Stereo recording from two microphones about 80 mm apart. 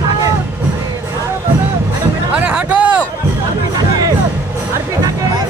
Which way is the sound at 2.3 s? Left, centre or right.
Centre.